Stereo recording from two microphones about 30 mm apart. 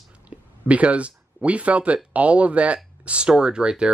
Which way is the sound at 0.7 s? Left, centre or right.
Right.